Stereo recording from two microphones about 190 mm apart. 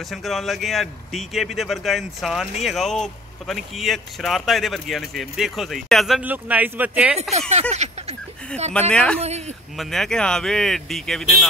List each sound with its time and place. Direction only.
0.1 s speech: centre (ahead or behind)
7.2 s a sound: 35° right (ahead or behind)
8.9 s speech: 5° left (ahead or behind)